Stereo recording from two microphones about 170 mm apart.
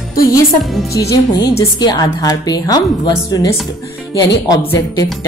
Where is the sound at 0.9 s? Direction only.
20° left (ahead or behind).